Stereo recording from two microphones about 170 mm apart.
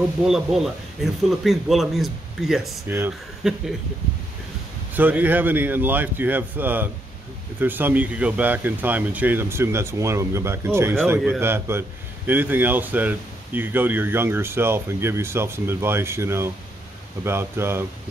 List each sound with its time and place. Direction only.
0.2 s speech: centre (ahead or behind)
4.9 s speech: 10° right (ahead or behind)